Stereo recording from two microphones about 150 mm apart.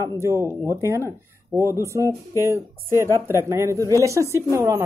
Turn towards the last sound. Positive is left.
turn(degrees=-20)  # may be behind; listen again after turning